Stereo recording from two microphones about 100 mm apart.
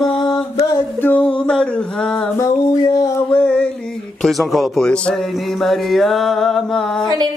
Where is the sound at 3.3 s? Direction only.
15° left (ahead or behind).